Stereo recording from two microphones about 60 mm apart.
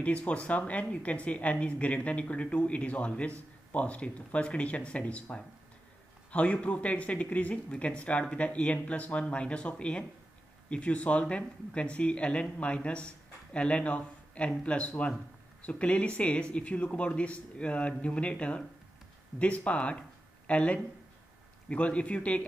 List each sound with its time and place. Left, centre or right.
0.0 s speech: left